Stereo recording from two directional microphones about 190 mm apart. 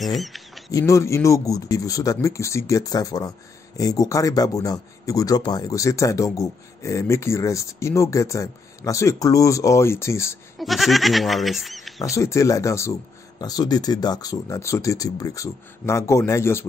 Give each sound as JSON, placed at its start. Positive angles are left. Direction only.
{"t": 0.0, "sound": "a sound", "side_deg": 0}
{"t": 0.7, "sound": "speech", "side_deg": 15}
{"t": 10.6, "sound": "speech", "side_deg": 0}
{"t": 12.2, "sound": "speech", "side_deg": 15}